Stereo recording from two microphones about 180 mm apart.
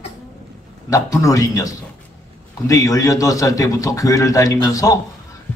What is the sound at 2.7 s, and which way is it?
A man's voice, 20° left (ahead or behind).